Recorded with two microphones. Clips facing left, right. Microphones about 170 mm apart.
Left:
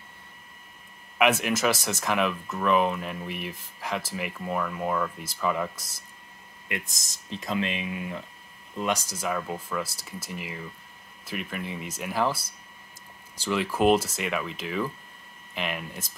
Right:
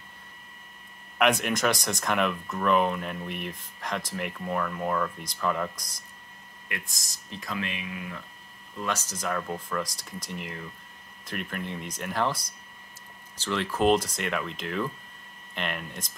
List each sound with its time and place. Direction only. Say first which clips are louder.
1.1 s speech: left 1 dB; 5° left (ahead or behind)
6.7 s speech: left 4 dB; 20° left (ahead or behind); by 16.1 s 5° left (ahead or behind)